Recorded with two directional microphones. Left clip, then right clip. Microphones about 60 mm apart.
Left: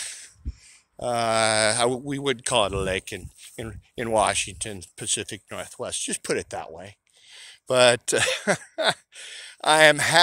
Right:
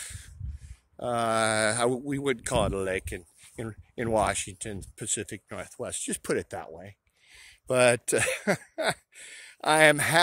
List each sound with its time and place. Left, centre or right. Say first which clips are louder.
0.0 s a sound: left 7 dB; right
0.9 s speech: left 4 dB; right
2.0 s speech: left 3 dB; right; by 5.9 s centre
5.9 s speech: left 3 dB; right
7.3 s a sound: left 4 dB; right
7.7 s speech: left 4 dB; right
8.0 s speech: left 4 dB; right
9.9 s speech: left 4 dB; right